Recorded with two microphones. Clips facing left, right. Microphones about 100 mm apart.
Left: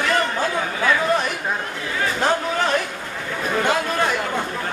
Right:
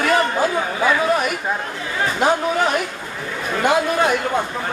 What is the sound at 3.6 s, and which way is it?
Speech, 15° right (ahead or behind).